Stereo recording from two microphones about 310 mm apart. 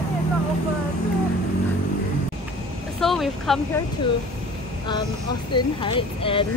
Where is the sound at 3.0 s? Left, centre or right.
Centre.